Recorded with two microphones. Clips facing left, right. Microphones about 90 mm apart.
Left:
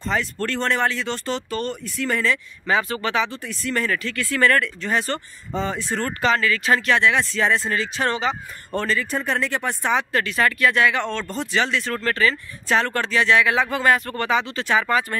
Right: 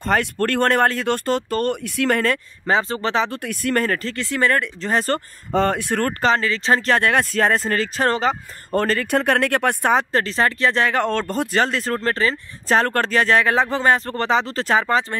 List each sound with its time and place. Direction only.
0.0 s speech: 55° right (ahead or behind)
2.6 s speech: 30° right (ahead or behind)
3.3 s speech: 55° right (ahead or behind)
4.2 s speech: 20° right (ahead or behind)
4.8 s speech: 40° right (ahead or behind)
5.5 s speech: 60° right (ahead or behind)
6.2 s speech: 30° right (ahead or behind)
7.0 s speech: 50° right (ahead or behind)
9.0 s speech: 65° right (ahead or behind)
10.1 s speech: 35° right (ahead or behind)